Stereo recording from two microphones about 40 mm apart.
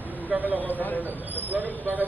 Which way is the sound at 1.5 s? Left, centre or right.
Right.